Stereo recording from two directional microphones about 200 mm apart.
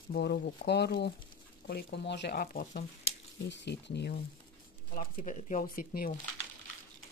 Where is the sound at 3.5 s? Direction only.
60° left (ahead or behind).